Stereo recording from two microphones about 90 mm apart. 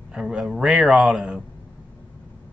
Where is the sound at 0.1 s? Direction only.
10° right (ahead or behind).